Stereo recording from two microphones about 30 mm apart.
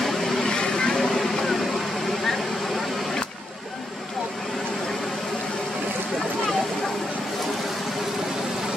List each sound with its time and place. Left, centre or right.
0.0 s vehicle: centre
0.5 s vehicle: left
0.9 s vehicle: centre